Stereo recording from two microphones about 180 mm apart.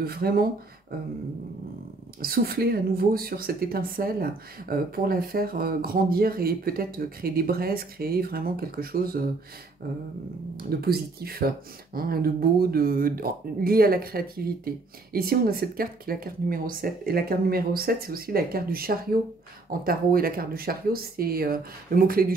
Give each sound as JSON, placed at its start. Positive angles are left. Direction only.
{"t": 0.0, "sound": "speech", "side_deg": -60}
{"t": 2.1, "sound": "speech", "side_deg": -55}
{"t": 10.6, "sound": "speech", "side_deg": -60}